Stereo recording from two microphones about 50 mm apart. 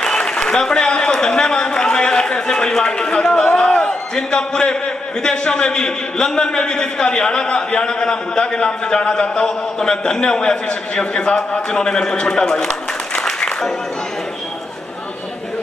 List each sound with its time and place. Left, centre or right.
0.0 s a man's voice: centre
13.2 s applause: centre